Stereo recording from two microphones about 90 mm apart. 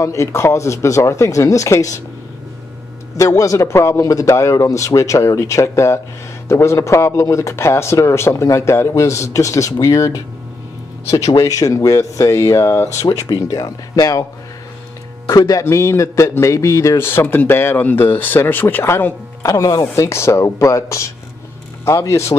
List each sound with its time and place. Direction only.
0.0 s speech: 35° left (ahead or behind)
3.2 s speech: 35° left (ahead or behind)
15.2 s speech: 40° left (ahead or behind)
15.6 s a man's voice: 30° left (ahead or behind)
19.4 s speech: 35° left (ahead or behind)